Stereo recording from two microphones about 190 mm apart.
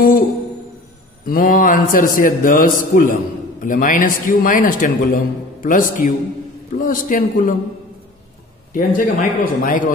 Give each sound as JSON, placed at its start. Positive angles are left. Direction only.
{"t": 1.2, "sound": "a man's voice", "side_deg": 45}
{"t": 8.7, "sound": "a man's voice", "side_deg": 45}